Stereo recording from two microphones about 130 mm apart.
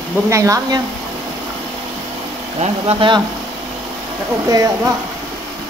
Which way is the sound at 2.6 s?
50° right (ahead or behind).